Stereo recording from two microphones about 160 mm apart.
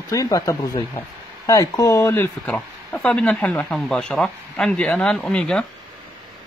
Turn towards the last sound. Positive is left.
turn(degrees=5)  # may be behind; listen again after turning